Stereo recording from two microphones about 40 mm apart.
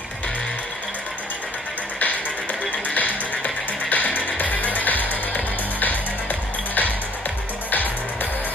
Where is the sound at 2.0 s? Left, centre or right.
Left.